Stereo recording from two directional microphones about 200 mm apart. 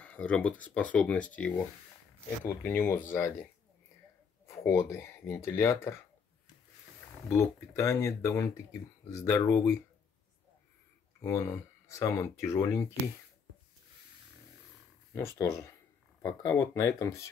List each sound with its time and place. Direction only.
0.0 s speech: 5° left (ahead or behind)
4.5 s speech: 15° left (ahead or behind)
7.2 s speech: 15° left (ahead or behind)
11.1 s speech: 15° left (ahead or behind)
15.1 s speech: 15° left (ahead or behind)